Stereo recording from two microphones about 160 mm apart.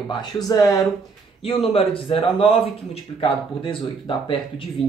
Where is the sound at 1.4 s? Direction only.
35° left (ahead or behind).